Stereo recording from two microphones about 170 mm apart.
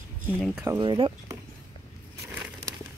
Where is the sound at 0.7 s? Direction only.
30° right (ahead or behind).